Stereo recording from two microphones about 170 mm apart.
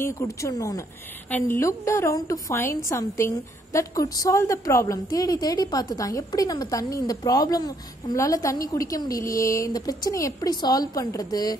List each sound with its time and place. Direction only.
0.0 s a woman's voice: 15° left (ahead or behind)